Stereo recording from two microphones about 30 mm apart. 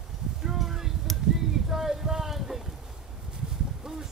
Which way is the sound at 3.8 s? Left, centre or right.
Centre.